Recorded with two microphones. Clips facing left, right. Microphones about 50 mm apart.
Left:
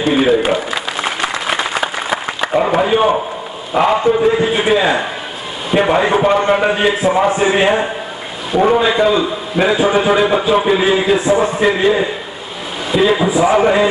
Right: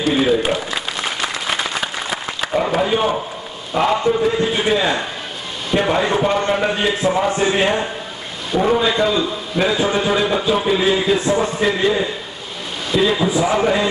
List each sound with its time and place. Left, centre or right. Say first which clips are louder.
0.1 s a man's voice: left 4 dB; left
0.4 s applause: left 4 dB; centre
3.7 s a man's voice: left 4 dB; centre